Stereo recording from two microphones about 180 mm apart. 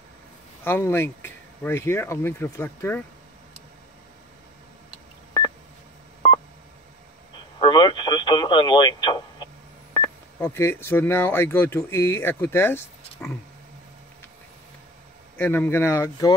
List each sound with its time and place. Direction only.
0.7 s speech: 15° left (ahead or behind)
7.6 s radio: 25° left (ahead or behind)
9.9 s speech: 15° left (ahead or behind)
13.2 s a sound: 10° left (ahead or behind)
15.3 s speech: 10° left (ahead or behind)